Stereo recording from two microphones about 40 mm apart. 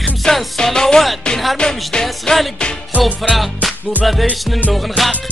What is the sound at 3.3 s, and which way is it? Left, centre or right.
Music, centre.